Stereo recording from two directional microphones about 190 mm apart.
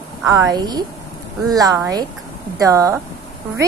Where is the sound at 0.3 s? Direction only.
20° right (ahead or behind).